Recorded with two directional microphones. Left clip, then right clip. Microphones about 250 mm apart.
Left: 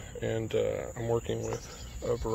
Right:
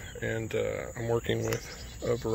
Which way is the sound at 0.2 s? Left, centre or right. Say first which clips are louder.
Left 1 dB; centre.